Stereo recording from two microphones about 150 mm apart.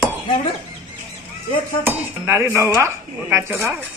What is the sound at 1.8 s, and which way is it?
Speech, 15° right (ahead or behind).